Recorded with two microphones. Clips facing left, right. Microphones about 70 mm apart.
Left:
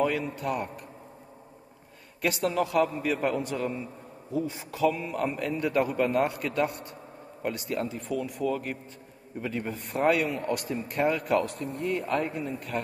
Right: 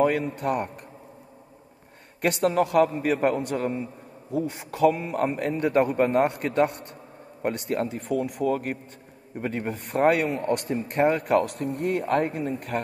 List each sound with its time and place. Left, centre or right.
0.0 s a man's voice: right
2.2 s a man's voice: right